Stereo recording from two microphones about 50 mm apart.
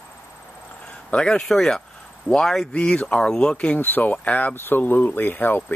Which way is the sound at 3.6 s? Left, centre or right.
Left.